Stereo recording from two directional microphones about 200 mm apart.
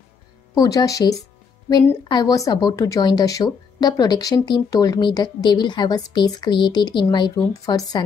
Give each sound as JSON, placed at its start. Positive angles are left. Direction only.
{"t": 0.6, "sound": "a woman's voice", "side_deg": 20}